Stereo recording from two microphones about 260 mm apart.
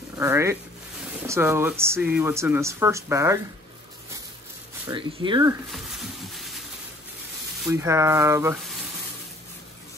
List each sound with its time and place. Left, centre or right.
0.2 s speech: centre
4.8 s speech: centre
5.7 s a sound: centre
7.6 s speech: centre